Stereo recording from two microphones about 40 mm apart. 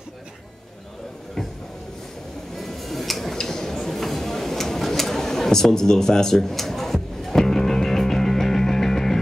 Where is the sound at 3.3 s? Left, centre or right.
Centre.